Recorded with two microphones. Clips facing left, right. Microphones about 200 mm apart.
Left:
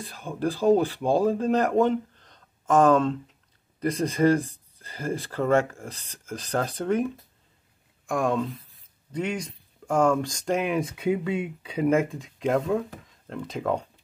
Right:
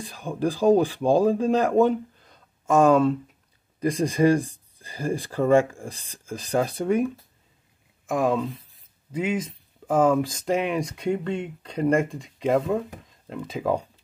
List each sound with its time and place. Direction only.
0.0 s speech: 15° right (ahead or behind)
1.8 s a sound: 10° right (ahead or behind)
3.8 s speech: 10° right (ahead or behind)
8.1 s speech: centre (ahead or behind)